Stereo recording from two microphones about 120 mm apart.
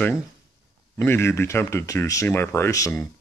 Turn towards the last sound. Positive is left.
turn(degrees=25)  # may be behind; listen again after turning